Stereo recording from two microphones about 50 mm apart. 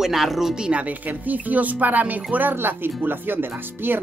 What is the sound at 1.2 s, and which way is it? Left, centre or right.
Speech, right.